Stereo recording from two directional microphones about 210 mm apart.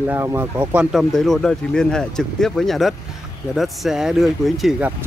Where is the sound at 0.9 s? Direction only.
Centre (ahead or behind).